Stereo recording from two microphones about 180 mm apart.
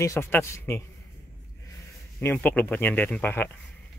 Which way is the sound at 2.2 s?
10° left (ahead or behind).